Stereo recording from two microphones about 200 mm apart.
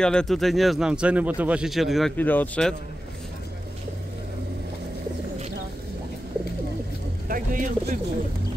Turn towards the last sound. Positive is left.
turn(degrees=-40)  # may be behind; listen again after turning